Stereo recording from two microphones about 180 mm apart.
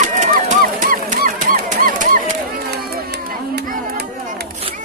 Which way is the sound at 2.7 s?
60° right (ahead or behind).